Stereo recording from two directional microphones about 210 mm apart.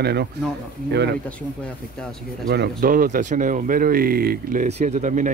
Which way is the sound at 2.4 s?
50° right (ahead or behind).